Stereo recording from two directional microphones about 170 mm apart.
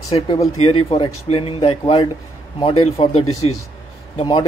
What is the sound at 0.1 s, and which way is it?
Speech, 35° left (ahead or behind).